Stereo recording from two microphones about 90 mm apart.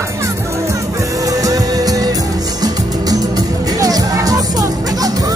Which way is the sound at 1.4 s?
40° right (ahead or behind).